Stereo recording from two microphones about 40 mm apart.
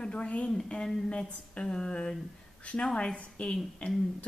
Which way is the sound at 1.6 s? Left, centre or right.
Centre.